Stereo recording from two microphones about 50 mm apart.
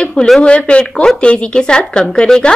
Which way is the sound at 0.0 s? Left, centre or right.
Centre.